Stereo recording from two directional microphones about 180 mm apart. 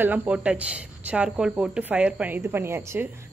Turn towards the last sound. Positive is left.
turn(degrees=-15)  # may be behind; listen again after turning